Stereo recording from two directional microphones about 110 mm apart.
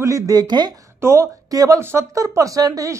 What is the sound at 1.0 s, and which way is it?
Speech, 25° right (ahead or behind).